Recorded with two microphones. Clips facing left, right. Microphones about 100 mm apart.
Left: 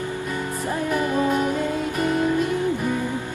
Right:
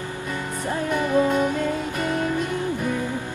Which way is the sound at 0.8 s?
5° left (ahead or behind).